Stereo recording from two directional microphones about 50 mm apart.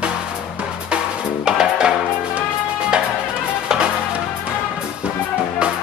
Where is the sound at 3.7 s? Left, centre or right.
Centre.